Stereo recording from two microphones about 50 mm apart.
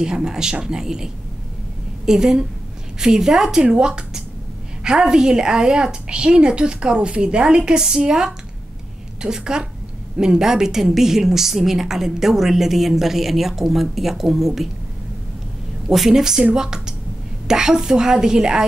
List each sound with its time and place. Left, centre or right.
0.0 s a woman's voice: centre
15.9 s a woman's voice: centre